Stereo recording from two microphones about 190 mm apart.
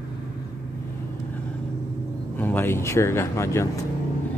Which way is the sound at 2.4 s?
10° left (ahead or behind).